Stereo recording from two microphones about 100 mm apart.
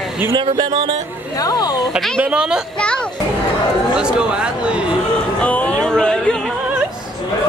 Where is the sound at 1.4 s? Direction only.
40° left (ahead or behind).